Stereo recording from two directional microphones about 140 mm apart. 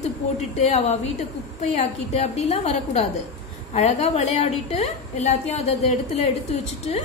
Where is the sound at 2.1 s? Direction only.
45° left (ahead or behind).